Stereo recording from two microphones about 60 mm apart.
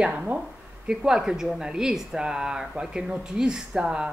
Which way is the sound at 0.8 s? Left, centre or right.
Centre.